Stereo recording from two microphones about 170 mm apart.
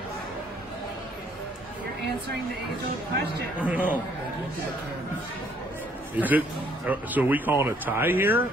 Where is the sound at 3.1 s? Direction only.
70° right (ahead or behind).